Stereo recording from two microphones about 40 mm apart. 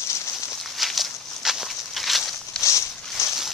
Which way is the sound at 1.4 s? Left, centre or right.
Centre.